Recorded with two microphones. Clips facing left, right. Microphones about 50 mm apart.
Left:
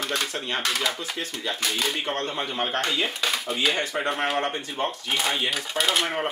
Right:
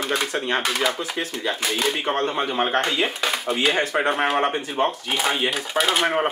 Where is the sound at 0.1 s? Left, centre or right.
Centre.